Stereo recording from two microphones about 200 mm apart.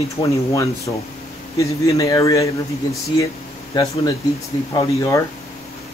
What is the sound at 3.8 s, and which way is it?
Speech, 20° left (ahead or behind).